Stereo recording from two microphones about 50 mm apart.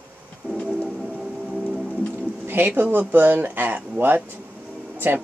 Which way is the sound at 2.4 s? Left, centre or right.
Right.